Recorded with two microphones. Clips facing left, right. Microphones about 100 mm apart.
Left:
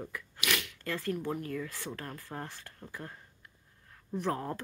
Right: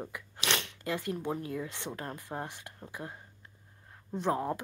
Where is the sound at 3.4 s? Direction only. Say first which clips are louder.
Right 2 dB; 20° right (ahead or behind).